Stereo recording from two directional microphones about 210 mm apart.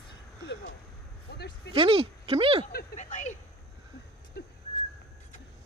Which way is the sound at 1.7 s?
25° right (ahead or behind).